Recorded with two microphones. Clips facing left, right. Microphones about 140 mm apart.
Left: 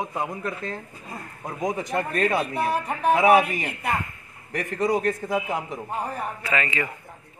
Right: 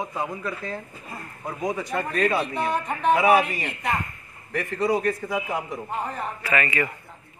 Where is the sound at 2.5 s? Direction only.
5° left (ahead or behind); by 5.8 s 25° left (ahead or behind).